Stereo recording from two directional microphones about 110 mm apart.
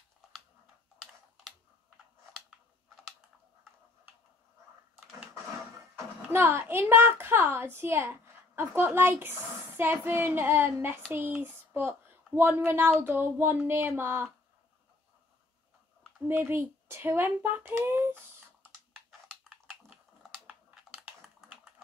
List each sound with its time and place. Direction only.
6.3 s a woman's voice: 20° right (ahead or behind)
16.3 s a woman's voice: 20° right (ahead or behind)
20.9 s typing: centre (ahead or behind)